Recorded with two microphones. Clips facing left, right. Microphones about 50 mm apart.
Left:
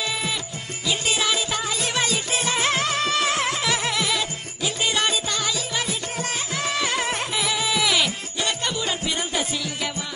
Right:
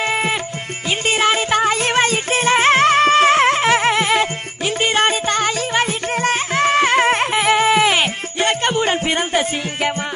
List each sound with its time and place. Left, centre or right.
0.0 s music: right